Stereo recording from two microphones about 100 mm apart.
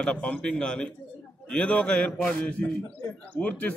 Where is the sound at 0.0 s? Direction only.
10° left (ahead or behind).